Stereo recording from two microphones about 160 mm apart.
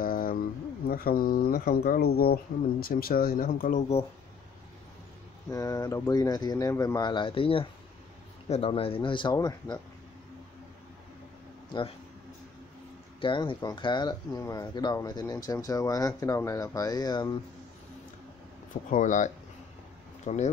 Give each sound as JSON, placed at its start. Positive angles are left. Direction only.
{"t": 0.0, "sound": "a sound", "side_deg": 60}
{"t": 0.8, "sound": "speech", "side_deg": 65}
{"t": 5.5, "sound": "speech", "side_deg": 20}
{"t": 13.2, "sound": "speech", "side_deg": 30}
{"t": 18.7, "sound": "speech", "side_deg": 55}